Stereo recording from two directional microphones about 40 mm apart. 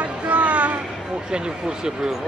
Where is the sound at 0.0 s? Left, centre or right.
Right.